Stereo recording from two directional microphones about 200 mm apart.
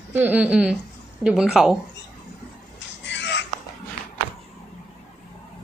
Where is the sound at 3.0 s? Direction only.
60° left (ahead or behind).